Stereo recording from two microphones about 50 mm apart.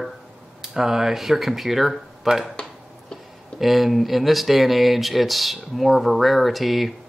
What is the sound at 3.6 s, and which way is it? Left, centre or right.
Speech, centre.